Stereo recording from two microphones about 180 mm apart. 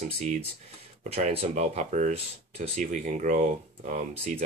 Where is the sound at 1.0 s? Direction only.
35° right (ahead or behind).